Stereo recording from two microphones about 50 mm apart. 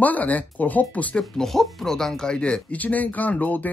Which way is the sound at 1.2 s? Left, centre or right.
Centre.